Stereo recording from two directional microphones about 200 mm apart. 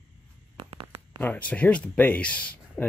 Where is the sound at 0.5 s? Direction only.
25° right (ahead or behind).